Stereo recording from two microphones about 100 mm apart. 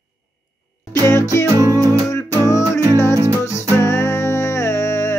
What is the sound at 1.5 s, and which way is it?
Music, 35° right (ahead or behind).